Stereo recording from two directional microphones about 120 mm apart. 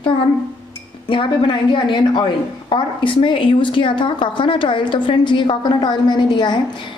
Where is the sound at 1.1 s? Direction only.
45° left (ahead or behind).